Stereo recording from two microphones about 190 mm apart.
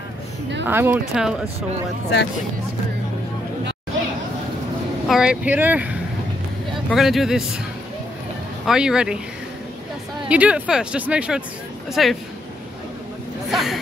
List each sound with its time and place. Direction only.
0.7 s speech: 10° right (ahead or behind)
5.0 s speech: centre (ahead or behind)
8.6 s speech: 5° right (ahead or behind)
10.2 s speech: 5° right (ahead or behind)
13.5 s speech: centre (ahead or behind)